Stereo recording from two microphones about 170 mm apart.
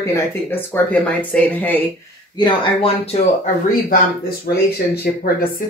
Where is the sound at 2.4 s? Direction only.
25° left (ahead or behind).